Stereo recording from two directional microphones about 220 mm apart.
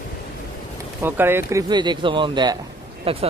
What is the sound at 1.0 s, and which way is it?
Speech, 10° right (ahead or behind).